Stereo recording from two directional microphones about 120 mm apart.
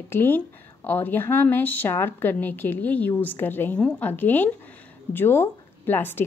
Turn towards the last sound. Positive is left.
turn(degrees=15)  # may be behind; listen again after turning